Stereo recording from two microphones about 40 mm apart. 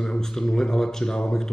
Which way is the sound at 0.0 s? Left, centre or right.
Centre.